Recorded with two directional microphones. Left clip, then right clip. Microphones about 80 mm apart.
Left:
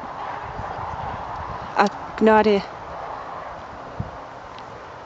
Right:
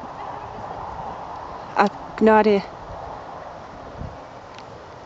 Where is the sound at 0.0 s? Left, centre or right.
Centre.